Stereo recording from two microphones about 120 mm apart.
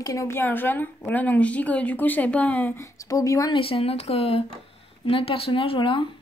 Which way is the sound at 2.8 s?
30° left (ahead or behind).